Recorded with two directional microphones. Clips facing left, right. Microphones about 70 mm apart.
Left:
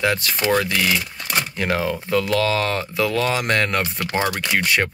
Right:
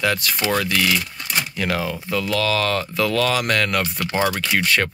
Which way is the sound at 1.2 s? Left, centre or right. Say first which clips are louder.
Left 2 dB; left.